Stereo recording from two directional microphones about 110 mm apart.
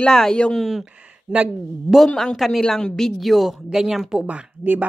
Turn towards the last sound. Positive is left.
turn(degrees=-15)  # may be behind; listen again after turning